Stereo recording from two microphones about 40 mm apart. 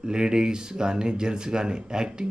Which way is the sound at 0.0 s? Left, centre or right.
Centre.